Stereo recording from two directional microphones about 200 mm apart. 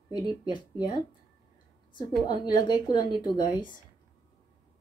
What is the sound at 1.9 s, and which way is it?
A woman's voice, 20° left (ahead or behind).